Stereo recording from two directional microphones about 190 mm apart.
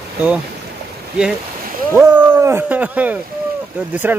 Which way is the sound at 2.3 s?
10° right (ahead or behind).